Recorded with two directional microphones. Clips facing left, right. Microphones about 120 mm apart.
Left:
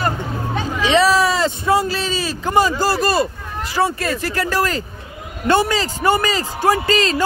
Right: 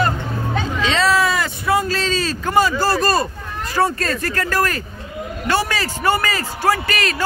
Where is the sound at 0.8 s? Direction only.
15° left (ahead or behind).